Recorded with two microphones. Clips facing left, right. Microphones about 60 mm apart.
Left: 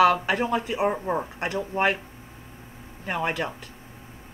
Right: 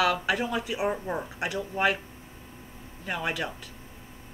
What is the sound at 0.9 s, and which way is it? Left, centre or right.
Speech, left.